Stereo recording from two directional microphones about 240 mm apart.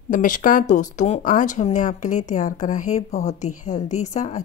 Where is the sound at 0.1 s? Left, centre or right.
Left.